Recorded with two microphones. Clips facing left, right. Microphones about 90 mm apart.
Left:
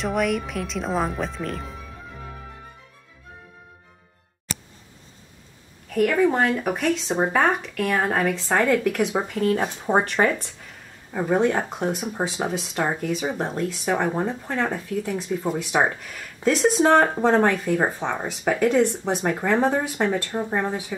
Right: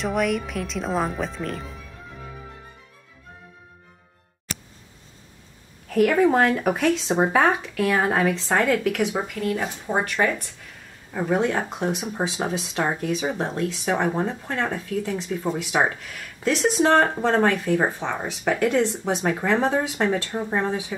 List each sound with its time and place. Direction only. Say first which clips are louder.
0.0 s speech: even; centre (ahead or behind)
5.9 s speech: right 1 dB; centre (ahead or behind)
9.3 s speech: left 4 dB; 35° left (ahead or behind)
11.1 s speech: left 2 dB; 5° left (ahead or behind)